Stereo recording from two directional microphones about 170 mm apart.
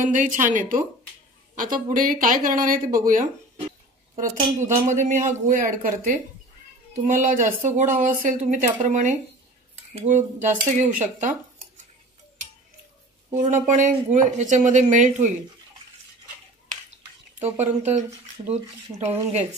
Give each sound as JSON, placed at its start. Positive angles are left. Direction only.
{"t": 0.0, "sound": "speech", "side_deg": -50}
{"t": 4.6, "sound": "speech", "side_deg": -45}
{"t": 13.4, "sound": "speech", "side_deg": -50}
{"t": 17.4, "sound": "speech", "side_deg": -45}